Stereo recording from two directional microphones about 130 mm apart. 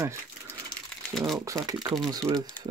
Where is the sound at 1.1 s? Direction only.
Centre (ahead or behind).